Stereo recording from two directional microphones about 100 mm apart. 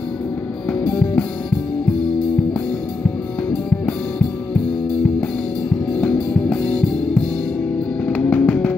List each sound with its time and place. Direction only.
0.8 s music: 15° left (ahead or behind)
5.9 s music: 15° left (ahead or behind)
8.1 s music: 15° left (ahead or behind)